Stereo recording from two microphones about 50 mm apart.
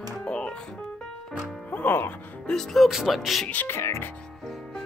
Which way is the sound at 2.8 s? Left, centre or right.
Centre.